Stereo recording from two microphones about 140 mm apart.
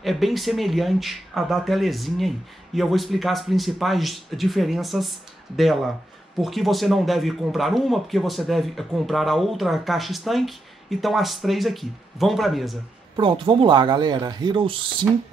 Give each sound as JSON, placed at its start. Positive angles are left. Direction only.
{"t": 0.0, "sound": "speech", "side_deg": 0}
{"t": 13.1, "sound": "speech", "side_deg": -35}